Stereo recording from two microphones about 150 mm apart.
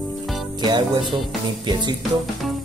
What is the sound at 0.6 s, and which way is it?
Music, 30° right (ahead or behind).